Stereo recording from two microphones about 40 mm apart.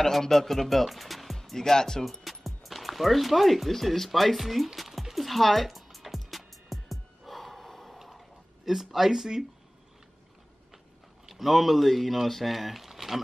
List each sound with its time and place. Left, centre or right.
0.0 s speech: centre
2.2 s speech: centre
4.7 s music: centre
8.6 s speech: centre
11.2 s speech: centre